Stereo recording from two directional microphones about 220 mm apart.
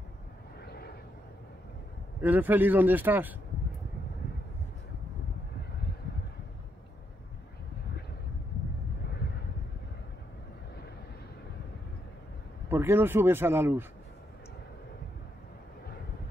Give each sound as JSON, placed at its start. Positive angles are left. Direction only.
{"t": 0.7, "sound": "vehicle", "side_deg": 45}
{"t": 2.2, "sound": "speech", "side_deg": -10}
{"t": 12.6, "sound": "speech", "side_deg": -10}